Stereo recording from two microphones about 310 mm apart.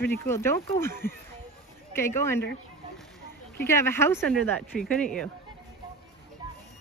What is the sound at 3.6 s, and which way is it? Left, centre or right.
Speech, centre.